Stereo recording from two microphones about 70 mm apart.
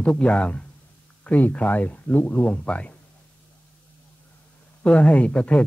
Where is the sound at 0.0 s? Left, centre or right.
Centre.